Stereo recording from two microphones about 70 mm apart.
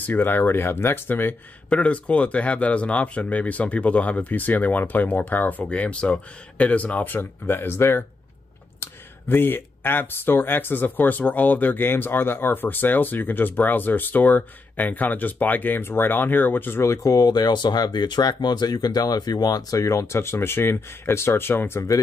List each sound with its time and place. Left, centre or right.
0.0 s speech: left
1.7 s speech: centre
7.2 s speech: left
9.3 s speech: left
16.8 s speech: left